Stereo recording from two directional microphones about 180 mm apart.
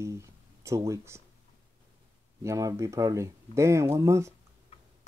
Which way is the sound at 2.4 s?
15° right (ahead or behind).